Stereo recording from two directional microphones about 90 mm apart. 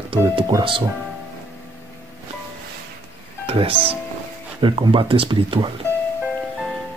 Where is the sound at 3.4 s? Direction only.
90° right.